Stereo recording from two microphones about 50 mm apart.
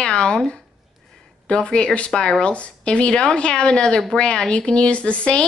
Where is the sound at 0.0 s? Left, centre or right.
Centre.